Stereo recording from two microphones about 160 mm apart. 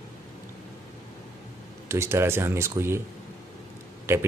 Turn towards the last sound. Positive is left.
turn(degrees=-15)  # may be behind; listen again after turning